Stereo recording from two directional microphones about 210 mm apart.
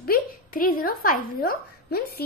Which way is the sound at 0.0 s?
45° left (ahead or behind).